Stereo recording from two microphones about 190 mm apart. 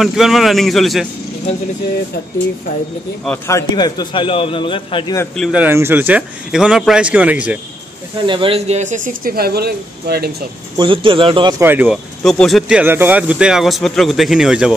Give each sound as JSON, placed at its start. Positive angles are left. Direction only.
{"t": 0.0, "sound": "speech", "side_deg": 0}
{"t": 3.3, "sound": "a man's voice", "side_deg": 15}
{"t": 5.3, "sound": "speech", "side_deg": 0}
{"t": 5.6, "sound": "speech", "side_deg": -10}
{"t": 8.3, "sound": "speech", "side_deg": -30}
{"t": 10.8, "sound": "speech", "side_deg": -25}
{"t": 11.6, "sound": "speech", "side_deg": -10}
{"t": 12.2, "sound": "speech", "side_deg": 5}